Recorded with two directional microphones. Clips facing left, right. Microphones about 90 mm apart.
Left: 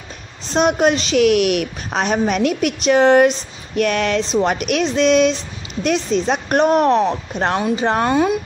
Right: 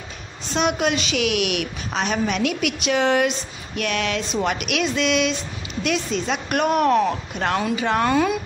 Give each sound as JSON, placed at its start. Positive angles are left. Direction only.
{"t": 0.5, "sound": "a woman's voice", "side_deg": 40}
{"t": 4.3, "sound": "a woman's voice", "side_deg": 25}
{"t": 4.6, "sound": "a woman's voice", "side_deg": 40}